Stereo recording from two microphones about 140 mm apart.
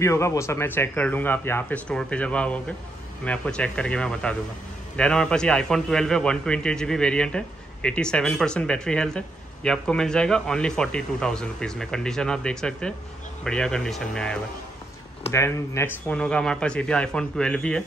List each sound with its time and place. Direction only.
0.0 s a man's voice: 20° left (ahead or behind)
15.3 s speech: 20° left (ahead or behind)